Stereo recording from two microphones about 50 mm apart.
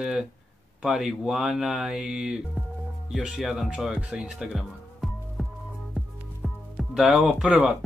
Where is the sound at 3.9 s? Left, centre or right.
Right.